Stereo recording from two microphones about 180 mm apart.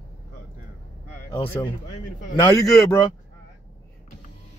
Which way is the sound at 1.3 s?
25° left (ahead or behind).